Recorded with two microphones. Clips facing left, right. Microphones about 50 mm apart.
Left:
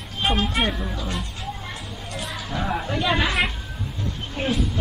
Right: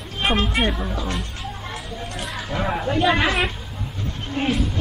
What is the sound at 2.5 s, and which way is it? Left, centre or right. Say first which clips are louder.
Speech: right 2 dB; right.